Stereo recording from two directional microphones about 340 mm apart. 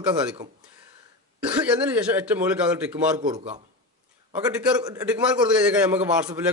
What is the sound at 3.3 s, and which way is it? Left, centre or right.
A man's voice, centre.